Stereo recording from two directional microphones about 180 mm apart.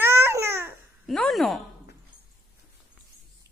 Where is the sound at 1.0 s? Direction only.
Centre (ahead or behind).